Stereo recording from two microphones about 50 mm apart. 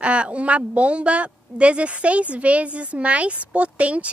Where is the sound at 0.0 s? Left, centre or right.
Right.